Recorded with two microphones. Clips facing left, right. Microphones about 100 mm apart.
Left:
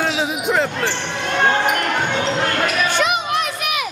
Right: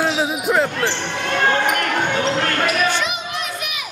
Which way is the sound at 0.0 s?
5° right (ahead or behind).